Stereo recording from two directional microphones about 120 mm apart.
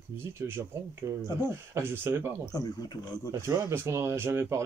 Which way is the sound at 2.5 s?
30° left (ahead or behind).